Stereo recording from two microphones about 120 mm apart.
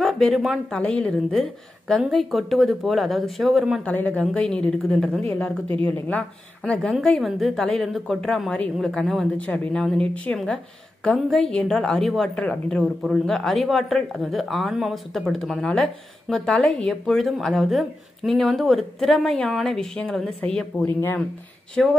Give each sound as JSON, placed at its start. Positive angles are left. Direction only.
{"t": 0.0, "sound": "a woman's voice", "side_deg": 0}
{"t": 1.4, "sound": "a woman's voice", "side_deg": 0}
{"t": 3.8, "sound": "a woman's voice", "side_deg": 10}
{"t": 20.8, "sound": "a woman's voice", "side_deg": 15}
{"t": 21.8, "sound": "a woman's voice", "side_deg": 5}